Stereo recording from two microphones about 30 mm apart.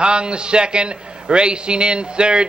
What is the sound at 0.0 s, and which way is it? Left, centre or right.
Speech, right.